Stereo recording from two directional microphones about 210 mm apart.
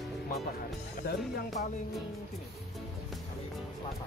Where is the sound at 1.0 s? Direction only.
50° left (ahead or behind).